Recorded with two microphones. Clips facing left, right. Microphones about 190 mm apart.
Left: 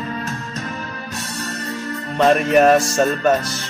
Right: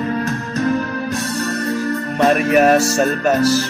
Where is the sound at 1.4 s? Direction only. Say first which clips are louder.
Right 6 dB; 65° right (ahead or behind).